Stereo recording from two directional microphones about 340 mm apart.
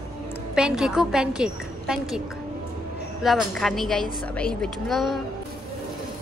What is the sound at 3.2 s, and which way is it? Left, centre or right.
A woman's voice, centre.